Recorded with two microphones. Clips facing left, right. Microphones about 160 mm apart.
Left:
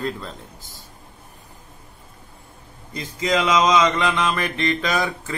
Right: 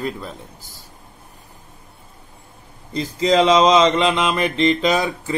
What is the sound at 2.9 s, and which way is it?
Speech, 30° right (ahead or behind).